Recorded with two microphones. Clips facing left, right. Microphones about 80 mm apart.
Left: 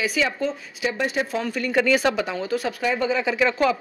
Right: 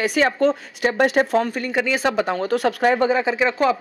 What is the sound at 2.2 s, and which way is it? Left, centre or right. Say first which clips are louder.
Speech: right 5 dB; right.